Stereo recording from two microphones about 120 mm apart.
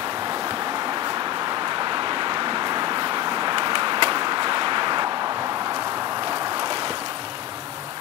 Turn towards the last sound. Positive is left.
turn(degrees=-35)  # may be behind; listen again after turning